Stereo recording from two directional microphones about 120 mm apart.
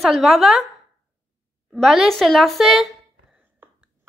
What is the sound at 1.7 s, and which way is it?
Speech, centre (ahead or behind).